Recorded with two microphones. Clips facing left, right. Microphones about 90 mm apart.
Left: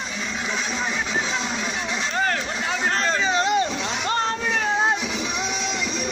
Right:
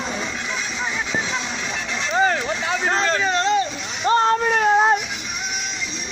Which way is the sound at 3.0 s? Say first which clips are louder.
Right 1 dB; 5° left (ahead or behind).